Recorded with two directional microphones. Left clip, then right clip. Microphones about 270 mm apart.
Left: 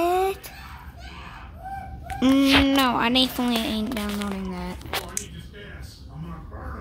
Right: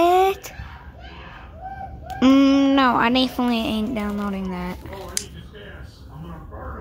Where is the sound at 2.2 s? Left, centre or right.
Centre.